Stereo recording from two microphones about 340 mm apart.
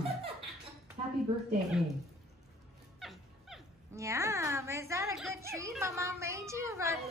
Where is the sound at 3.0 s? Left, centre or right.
Centre.